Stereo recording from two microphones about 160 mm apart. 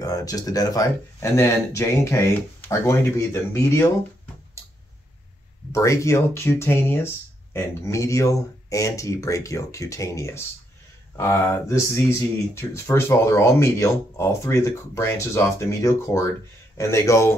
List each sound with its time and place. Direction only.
0.0 s speech: 20° left (ahead or behind)
5.7 s speech: 20° left (ahead or behind)